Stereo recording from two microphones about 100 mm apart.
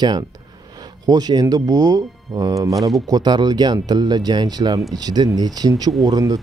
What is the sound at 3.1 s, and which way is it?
Speech, 45° right (ahead or behind).